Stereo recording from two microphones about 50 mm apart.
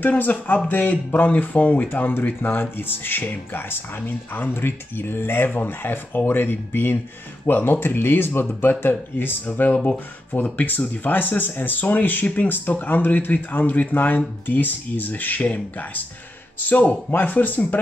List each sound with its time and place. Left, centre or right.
0.0 s speech: left